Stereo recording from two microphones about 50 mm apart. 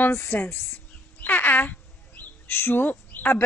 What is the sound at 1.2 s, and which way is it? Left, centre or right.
Bird, left.